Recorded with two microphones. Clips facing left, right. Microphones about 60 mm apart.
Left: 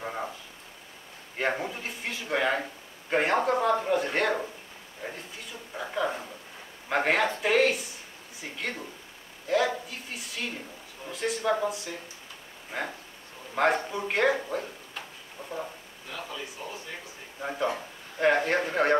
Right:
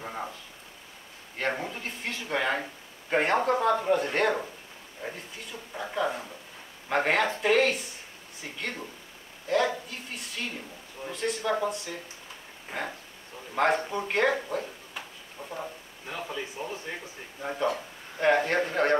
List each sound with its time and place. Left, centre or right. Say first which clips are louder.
0.0 s a sound: left 2 dB; centre
1.4 s speech: left 1 dB; centre
5.8 s speech: even; centre
9.5 s a sound: even; centre
11.1 s speech: left 1 dB; centre
13.6 s speech: even; centre
16.1 s speech: right 3 dB; right
17.4 s speech: right 1 dB; centre